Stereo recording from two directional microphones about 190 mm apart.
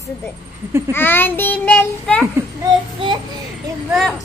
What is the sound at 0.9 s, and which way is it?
A child's voice, 10° left (ahead or behind).